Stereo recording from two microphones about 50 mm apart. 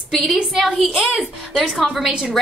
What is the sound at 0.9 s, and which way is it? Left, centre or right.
Speech, centre.